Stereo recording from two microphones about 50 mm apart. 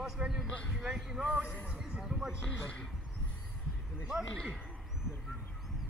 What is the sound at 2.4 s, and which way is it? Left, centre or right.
Speech, centre.